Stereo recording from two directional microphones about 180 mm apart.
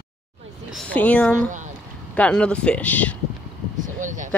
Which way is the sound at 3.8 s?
45° right (ahead or behind).